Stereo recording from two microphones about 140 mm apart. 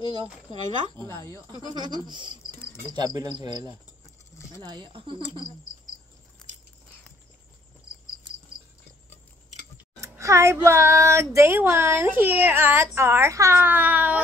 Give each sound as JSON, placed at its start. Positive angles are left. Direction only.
{"t": 1.0, "sound": "speech", "side_deg": 20}
{"t": 1.5, "sound": "cricket", "side_deg": -30}
{"t": 9.9, "sound": "speech", "side_deg": -20}